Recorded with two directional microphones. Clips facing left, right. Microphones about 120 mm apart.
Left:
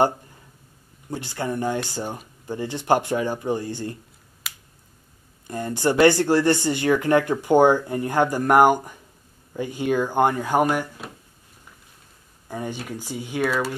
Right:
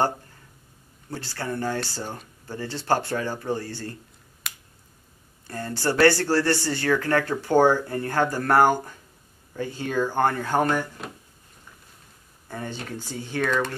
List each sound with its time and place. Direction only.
1.1 s speech: 15° left (ahead or behind)
4.4 s finger snapping: 5° left (ahead or behind)
5.5 s speech: 15° left (ahead or behind)
12.4 s speech: 15° left (ahead or behind)